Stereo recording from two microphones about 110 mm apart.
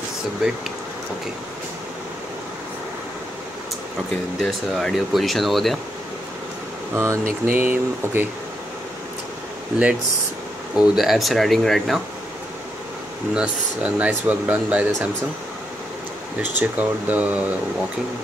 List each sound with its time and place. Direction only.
0.4 s speech: 5° right (ahead or behind)
4.4 s speech: centre (ahead or behind)
6.9 s speech: 20° right (ahead or behind)
10.8 s speech: centre (ahead or behind)
13.3 s speech: 10° right (ahead or behind)
16.3 s speech: 15° right (ahead or behind)